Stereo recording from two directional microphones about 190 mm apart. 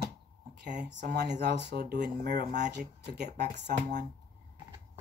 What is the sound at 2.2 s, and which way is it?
Speech, 40° right (ahead or behind).